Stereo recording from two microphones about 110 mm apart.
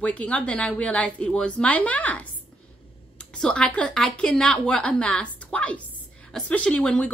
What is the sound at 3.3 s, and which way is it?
Speech, 10° left (ahead or behind).